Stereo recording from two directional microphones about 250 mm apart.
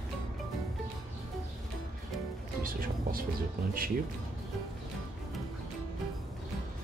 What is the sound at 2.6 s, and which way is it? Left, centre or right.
Music, right.